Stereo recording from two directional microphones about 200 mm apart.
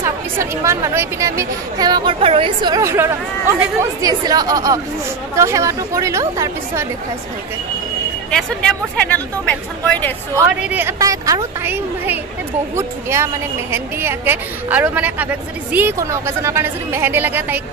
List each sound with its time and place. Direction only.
0.0 s speech: 15° right (ahead or behind)
8.3 s speech: 5° left (ahead or behind)
10.3 s speech: 10° right (ahead or behind)